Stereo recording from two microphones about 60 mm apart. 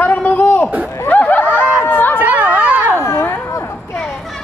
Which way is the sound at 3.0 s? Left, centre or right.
Left.